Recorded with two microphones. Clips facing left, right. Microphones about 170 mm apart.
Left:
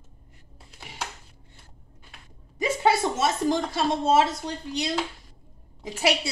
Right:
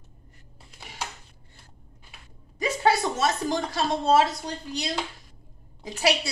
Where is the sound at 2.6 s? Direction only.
25° left (ahead or behind).